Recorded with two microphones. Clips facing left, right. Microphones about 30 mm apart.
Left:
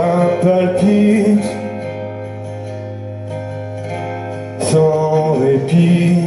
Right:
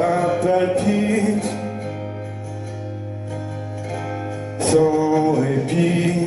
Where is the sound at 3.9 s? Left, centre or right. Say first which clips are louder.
Left 3 dB; left.